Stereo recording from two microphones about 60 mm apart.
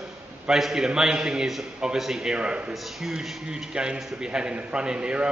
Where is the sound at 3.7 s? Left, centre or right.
Centre.